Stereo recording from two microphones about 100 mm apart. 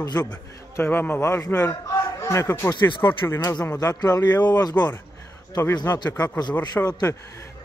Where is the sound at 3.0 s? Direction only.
20° left (ahead or behind).